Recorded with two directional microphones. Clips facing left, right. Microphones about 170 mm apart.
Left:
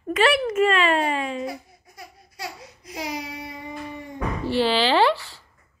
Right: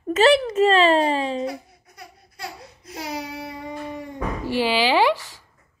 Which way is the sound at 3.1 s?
60° right (ahead or behind).